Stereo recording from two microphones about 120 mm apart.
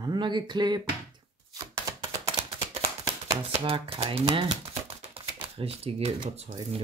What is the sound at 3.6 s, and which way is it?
Speech, 50° right (ahead or behind).